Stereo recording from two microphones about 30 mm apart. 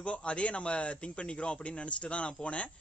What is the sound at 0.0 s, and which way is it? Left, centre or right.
A man's voice, left.